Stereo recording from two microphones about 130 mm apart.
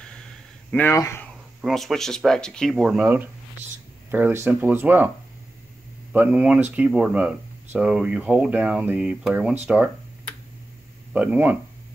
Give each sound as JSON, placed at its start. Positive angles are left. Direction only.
{"t": 0.7, "sound": "speech", "side_deg": 15}
{"t": 1.6, "sound": "speech", "side_deg": 0}
{"t": 4.1, "sound": "speech", "side_deg": -15}
{"t": 6.1, "sound": "speech", "side_deg": -10}
{"t": 11.1, "sound": "speech", "side_deg": -10}